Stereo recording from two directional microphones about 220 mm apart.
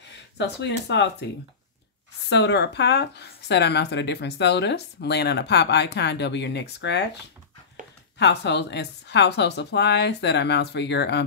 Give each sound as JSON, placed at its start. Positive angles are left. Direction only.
{"t": 0.4, "sound": "speech", "side_deg": 50}
{"t": 2.2, "sound": "speech", "side_deg": 50}
{"t": 8.2, "sound": "speech", "side_deg": 50}